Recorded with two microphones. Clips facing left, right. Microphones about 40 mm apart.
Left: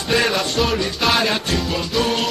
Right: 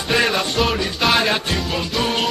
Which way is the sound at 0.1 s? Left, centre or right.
Centre.